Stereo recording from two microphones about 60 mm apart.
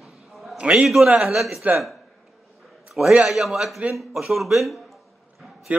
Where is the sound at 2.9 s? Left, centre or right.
Centre.